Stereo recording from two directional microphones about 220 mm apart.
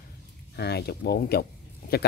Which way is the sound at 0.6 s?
45° left (ahead or behind).